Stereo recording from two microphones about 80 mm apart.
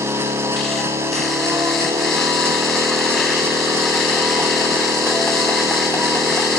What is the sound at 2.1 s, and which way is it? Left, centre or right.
Vehicle, right.